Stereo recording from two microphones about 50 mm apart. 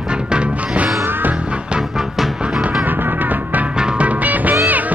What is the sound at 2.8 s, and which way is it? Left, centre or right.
Music, right.